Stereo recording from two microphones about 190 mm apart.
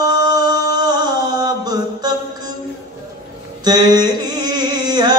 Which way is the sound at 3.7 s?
20° right (ahead or behind).